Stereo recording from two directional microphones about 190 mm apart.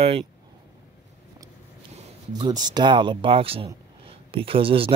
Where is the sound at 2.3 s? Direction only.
20° right (ahead or behind).